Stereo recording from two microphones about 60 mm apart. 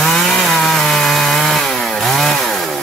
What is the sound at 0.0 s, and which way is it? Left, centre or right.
Wood, centre.